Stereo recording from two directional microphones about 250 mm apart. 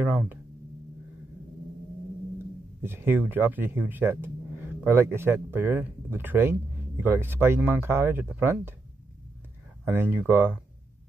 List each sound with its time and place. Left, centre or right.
0.0 s speech: centre
2.8 s speech: centre
9.8 s speech: centre